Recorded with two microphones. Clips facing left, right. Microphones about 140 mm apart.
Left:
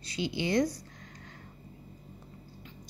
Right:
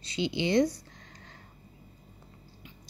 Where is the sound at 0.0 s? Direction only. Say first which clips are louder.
Right 3 dB; 25° right (ahead or behind).